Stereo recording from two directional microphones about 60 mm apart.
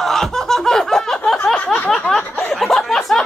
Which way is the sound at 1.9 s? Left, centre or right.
Centre.